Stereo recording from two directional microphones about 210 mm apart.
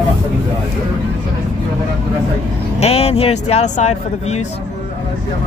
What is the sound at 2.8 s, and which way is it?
Speech, 30° left (ahead or behind).